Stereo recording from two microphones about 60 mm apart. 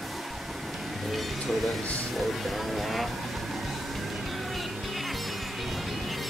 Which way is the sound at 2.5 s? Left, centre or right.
Centre.